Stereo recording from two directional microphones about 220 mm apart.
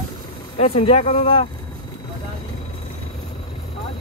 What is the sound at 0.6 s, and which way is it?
Speech, 25° left (ahead or behind).